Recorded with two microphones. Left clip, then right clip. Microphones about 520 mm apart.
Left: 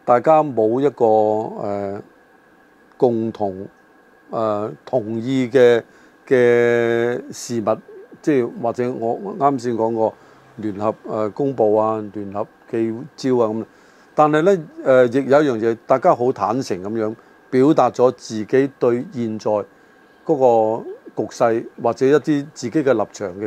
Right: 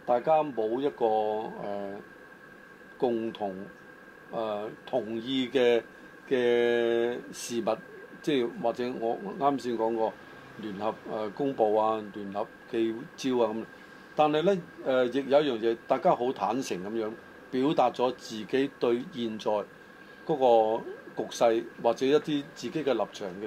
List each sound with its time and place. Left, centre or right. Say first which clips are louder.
0.0 s speech: left 11 dB; left
3.4 s speech: left 11 dB; left
7.7 s a man's voice: left 10 dB; left
14.1 s a man's voice: left 10 dB; left